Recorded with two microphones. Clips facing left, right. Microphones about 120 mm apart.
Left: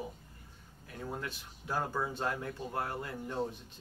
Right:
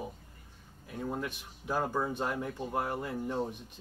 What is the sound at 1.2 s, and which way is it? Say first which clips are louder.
Speech: right 4 dB; 20° right (ahead or behind).